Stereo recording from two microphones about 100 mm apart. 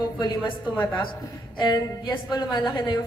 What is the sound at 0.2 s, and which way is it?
A woman's voice, 50° left (ahead or behind).